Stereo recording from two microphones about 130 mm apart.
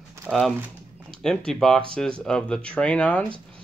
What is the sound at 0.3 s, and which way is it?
Speech, 15° right (ahead or behind).